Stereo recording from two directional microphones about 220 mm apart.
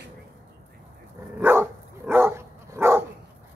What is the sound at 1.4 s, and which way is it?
Dog, 10° right (ahead or behind).